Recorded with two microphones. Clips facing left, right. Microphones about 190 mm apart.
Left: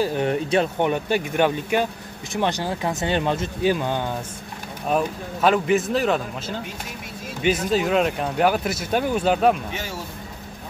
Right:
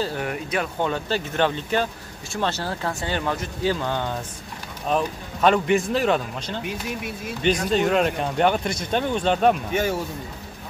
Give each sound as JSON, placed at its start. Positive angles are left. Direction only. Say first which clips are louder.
{"t": 0.0, "sound": "speech", "louder": "left 5 dB", "side_deg": 20}
{"t": 9.7, "sound": "speech", "louder": "right 8 dB", "side_deg": -50}